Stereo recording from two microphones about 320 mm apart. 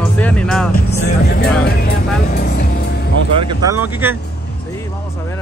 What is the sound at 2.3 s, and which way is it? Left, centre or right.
Vehicle, left.